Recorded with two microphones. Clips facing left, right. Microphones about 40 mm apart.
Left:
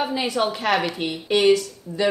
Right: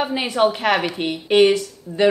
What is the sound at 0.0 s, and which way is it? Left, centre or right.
Speech, right.